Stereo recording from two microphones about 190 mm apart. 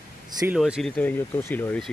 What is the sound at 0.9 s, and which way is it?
Speech, 10° left (ahead or behind).